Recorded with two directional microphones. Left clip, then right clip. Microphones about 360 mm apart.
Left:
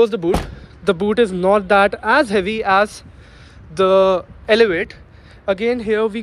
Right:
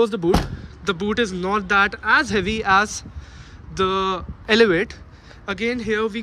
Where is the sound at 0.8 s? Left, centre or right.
Centre.